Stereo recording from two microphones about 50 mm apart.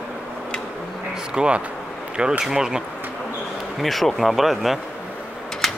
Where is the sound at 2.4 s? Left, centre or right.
Centre.